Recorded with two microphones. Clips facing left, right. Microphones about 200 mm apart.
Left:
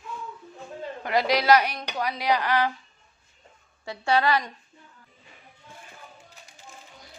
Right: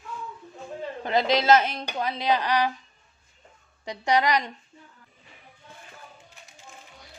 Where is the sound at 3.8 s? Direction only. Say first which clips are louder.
Even; 15° right (ahead or behind).